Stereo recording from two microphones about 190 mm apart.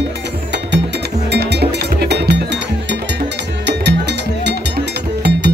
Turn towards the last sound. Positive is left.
turn(degrees=-60)  # may be behind; listen again after turning